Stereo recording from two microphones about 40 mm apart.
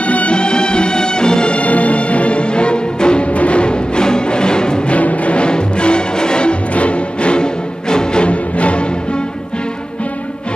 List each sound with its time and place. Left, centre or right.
0.0 s music: left
4.9 s music: left
6.7 s music: left